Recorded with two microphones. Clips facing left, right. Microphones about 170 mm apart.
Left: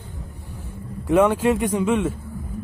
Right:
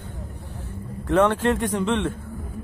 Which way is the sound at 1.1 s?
10° left (ahead or behind).